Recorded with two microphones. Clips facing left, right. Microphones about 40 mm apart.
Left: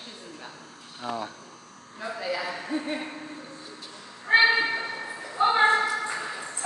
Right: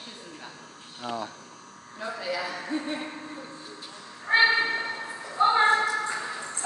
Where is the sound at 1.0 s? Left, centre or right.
Centre.